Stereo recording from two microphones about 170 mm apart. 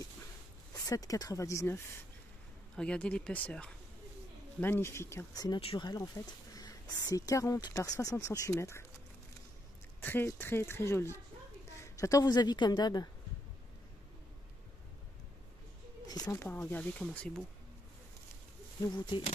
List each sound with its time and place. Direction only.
0.7 s speech: 20° left (ahead or behind)
2.7 s speech: 5° left (ahead or behind)
10.0 s a woman's voice: 15° left (ahead or behind)
16.1 s speech: 20° left (ahead or behind)